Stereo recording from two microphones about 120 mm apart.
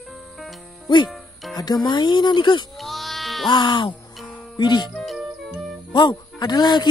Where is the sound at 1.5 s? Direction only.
35° left (ahead or behind).